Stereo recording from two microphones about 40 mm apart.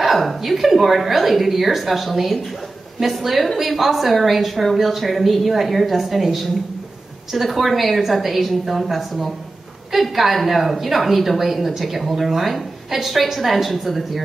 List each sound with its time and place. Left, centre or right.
0.0 s a woman's voice: centre